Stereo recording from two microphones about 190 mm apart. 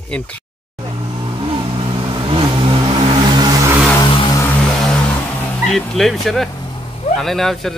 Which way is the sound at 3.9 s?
25° left (ahead or behind).